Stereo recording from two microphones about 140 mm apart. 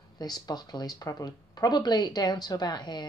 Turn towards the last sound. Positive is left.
turn(degrees=30)  # may be behind; listen again after turning